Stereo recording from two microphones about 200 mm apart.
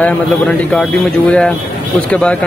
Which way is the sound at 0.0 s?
5° left (ahead or behind).